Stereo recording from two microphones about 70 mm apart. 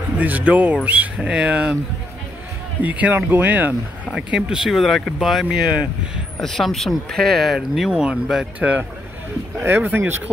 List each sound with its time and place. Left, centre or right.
0.2 s speech: right
2.8 s speech: right
4.1 s speech: centre
5.5 s speech: centre
6.4 s speech: centre
8.5 s speech: right
9.6 s speech: right